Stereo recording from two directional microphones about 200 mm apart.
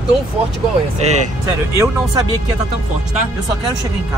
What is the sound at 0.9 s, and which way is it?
Speech, 35° right (ahead or behind).